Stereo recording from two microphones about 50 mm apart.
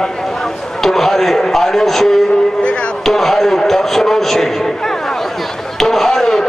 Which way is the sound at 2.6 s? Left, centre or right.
Left.